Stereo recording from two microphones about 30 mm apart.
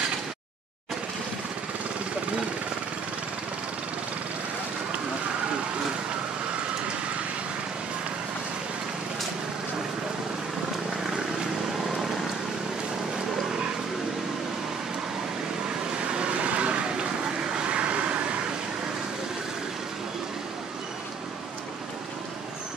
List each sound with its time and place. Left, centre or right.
15.9 s vehicle: right